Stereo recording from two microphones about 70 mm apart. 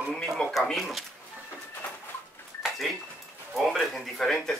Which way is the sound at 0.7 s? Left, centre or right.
Centre.